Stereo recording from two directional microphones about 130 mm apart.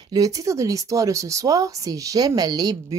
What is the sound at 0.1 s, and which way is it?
Speech, 25° right (ahead or behind).